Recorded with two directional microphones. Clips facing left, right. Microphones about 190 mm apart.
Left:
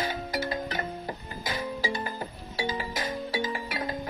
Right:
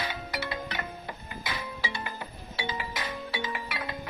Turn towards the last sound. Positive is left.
turn(degrees=40)  # may be behind; listen again after turning